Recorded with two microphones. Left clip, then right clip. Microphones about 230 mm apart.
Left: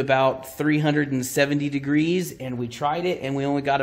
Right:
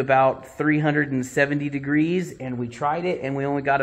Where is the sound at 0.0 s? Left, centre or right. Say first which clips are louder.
Right 2 dB; left.